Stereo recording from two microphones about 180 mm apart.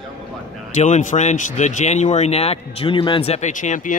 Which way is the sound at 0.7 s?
40° left (ahead or behind).